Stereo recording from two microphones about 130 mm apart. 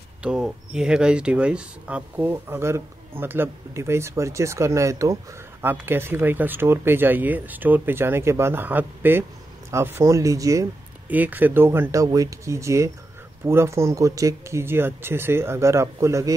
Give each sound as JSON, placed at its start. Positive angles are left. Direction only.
{"t": 0.2, "sound": "speech", "side_deg": -5}
{"t": 11.1, "sound": "speech", "side_deg": -15}